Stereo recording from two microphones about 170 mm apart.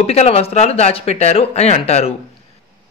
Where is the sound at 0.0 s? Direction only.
40° left (ahead or behind).